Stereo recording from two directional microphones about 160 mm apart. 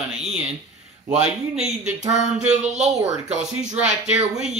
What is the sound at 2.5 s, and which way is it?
Speech, 45° right (ahead or behind).